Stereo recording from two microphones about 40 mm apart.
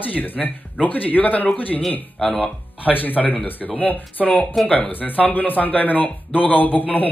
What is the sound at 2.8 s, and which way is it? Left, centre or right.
A man's voice, left.